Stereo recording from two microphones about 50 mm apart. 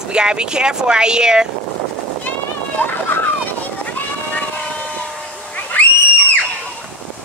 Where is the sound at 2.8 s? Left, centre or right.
Left.